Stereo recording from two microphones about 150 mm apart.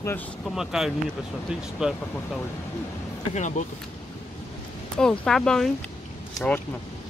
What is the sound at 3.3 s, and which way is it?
Speech, 50° left (ahead or behind).